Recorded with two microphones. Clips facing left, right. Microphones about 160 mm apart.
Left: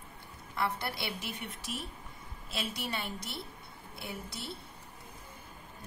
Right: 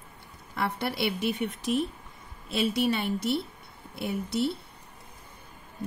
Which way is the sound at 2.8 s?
60° right (ahead or behind).